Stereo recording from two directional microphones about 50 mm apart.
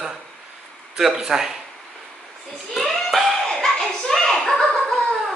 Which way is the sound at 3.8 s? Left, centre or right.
Centre.